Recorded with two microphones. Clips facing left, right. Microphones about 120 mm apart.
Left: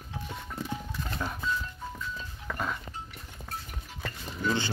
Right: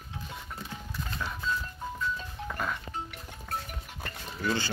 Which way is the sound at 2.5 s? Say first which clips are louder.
Left 1 dB; 15° left (ahead or behind).